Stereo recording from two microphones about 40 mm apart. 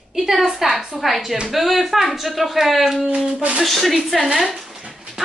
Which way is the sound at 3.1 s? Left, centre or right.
Right.